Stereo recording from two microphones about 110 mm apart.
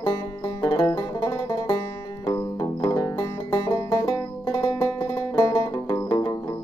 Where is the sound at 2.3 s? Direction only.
40° left (ahead or behind).